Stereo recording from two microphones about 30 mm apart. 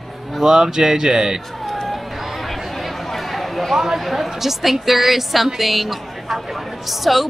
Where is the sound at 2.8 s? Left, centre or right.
Centre.